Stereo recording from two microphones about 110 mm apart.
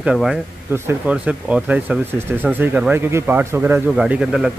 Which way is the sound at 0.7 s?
20° right (ahead or behind).